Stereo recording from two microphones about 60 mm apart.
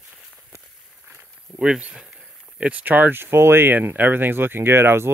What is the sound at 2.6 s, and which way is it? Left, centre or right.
Speech, right.